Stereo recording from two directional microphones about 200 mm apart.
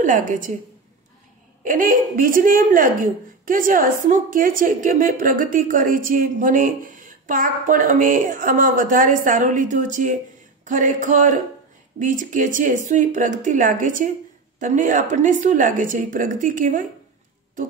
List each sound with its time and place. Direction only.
0.0 s a woman's voice: 40° right (ahead or behind)
1.6 s a woman's voice: 45° right (ahead or behind)